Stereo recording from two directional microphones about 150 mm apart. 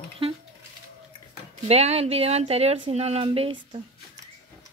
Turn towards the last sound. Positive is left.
turn(degrees=-35)  # may be behind; listen again after turning